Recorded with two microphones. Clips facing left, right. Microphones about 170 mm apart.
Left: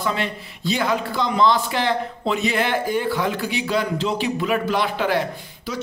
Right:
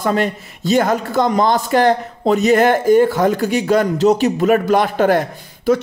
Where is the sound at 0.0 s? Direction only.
45° right (ahead or behind).